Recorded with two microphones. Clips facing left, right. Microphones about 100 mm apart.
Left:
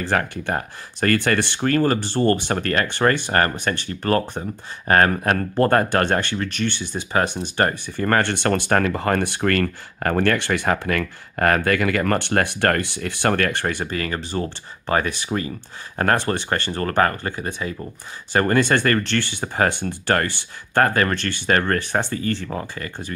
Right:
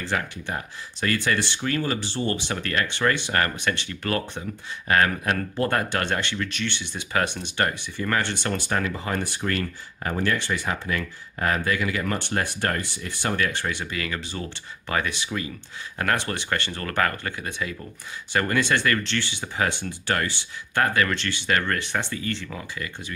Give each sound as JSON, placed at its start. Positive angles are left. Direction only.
{"t": 0.0, "sound": "speech", "side_deg": 50}